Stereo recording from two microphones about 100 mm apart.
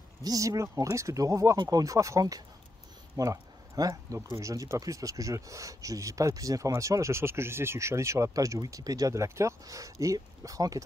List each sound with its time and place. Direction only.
0.2 s speech: 35° right (ahead or behind)